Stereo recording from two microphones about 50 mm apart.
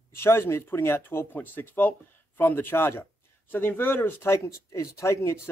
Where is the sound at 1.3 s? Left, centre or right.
Left.